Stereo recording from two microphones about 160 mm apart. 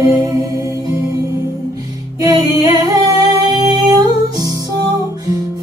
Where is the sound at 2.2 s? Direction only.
20° right (ahead or behind).